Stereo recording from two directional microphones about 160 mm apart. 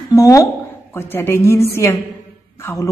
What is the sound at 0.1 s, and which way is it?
A woman's voice, 20° left (ahead or behind).